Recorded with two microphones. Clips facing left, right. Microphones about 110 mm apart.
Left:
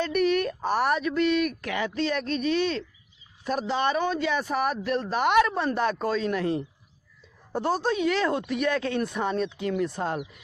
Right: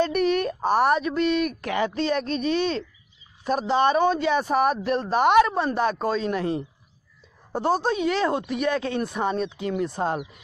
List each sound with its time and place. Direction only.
0.0 s speech: 30° right (ahead or behind)